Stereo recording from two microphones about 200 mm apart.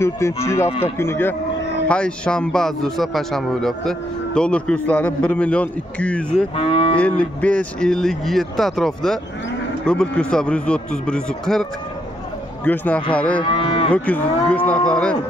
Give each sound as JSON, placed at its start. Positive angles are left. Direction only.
{"t": 0.4, "sound": "speech", "side_deg": 15}
{"t": 0.7, "sound": "cattle", "side_deg": 30}
{"t": 0.9, "sound": "a man's voice", "side_deg": 10}
{"t": 6.5, "sound": "cattle", "side_deg": 25}
{"t": 7.0, "sound": "a man's voice", "side_deg": 5}
{"t": 12.6, "sound": "speech", "side_deg": 10}
{"t": 13.4, "sound": "cattle", "side_deg": 25}
{"t": 13.9, "sound": "a man's voice", "side_deg": 5}